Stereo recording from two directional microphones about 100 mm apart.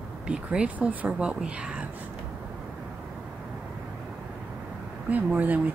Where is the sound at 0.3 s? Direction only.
10° right (ahead or behind).